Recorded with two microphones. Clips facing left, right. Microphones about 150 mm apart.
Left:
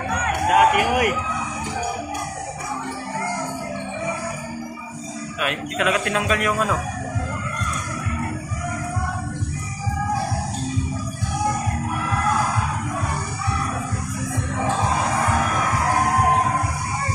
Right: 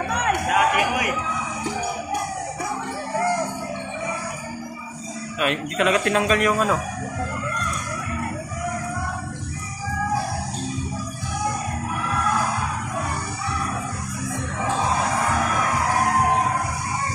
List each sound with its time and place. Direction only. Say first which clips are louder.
0.6 s speech: left 6 dB; 60° left (ahead or behind)
5.4 s speech: right 2 dB; 5° left (ahead or behind)